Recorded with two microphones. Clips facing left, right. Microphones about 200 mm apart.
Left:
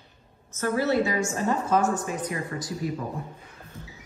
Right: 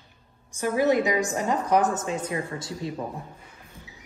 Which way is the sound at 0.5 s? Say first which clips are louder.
Right 2 dB; 15° right (ahead or behind).